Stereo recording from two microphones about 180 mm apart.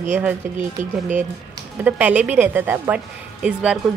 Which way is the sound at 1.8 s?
10° right (ahead or behind).